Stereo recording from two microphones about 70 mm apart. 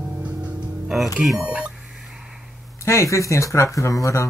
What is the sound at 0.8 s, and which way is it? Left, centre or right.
Speech, centre.